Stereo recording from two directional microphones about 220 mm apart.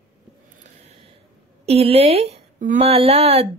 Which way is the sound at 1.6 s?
25° right (ahead or behind).